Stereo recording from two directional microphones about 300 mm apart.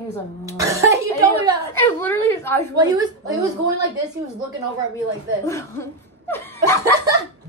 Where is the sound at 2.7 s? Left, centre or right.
Centre.